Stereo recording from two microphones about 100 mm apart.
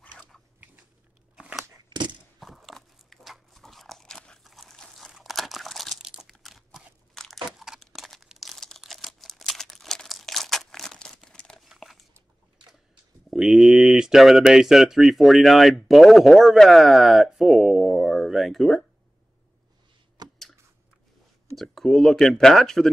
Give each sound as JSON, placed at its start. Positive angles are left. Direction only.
{"t": 1.3, "sound": "a sound", "side_deg": -5}
{"t": 1.9, "sound": "crushing", "side_deg": -50}
{"t": 2.4, "sound": "biting", "side_deg": 0}
{"t": 4.5, "sound": "crumpling", "side_deg": 0}
{"t": 6.3, "sound": "crunch", "side_deg": 0}
{"t": 7.5, "sound": "crumpling", "side_deg": -5}
{"t": 13.3, "sound": "speech", "side_deg": -5}
{"t": 20.2, "sound": "a sound", "side_deg": -40}
{"t": 21.5, "sound": "speech", "side_deg": 0}